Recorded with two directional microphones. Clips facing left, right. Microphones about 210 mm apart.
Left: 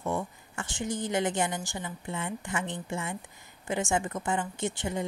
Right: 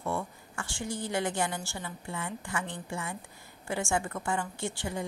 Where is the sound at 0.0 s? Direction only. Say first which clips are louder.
Left 2 dB; 20° left (ahead or behind).